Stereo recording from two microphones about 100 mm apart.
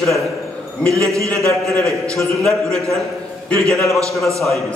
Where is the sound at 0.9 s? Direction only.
30° right (ahead or behind).